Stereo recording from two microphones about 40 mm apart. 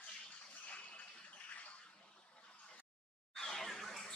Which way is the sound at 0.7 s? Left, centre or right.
Left.